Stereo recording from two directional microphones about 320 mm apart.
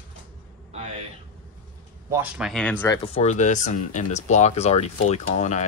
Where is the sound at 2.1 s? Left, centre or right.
Centre.